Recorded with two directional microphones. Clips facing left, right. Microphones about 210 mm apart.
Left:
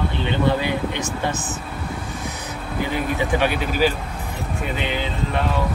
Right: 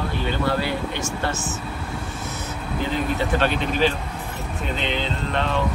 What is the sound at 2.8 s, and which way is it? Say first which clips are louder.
Speech: left 1 dB; 10° left (ahead or behind).